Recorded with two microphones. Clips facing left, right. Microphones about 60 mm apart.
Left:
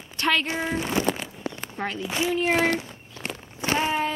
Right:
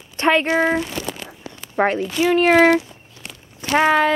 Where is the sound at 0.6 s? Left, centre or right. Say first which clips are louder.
Right 9 dB; right.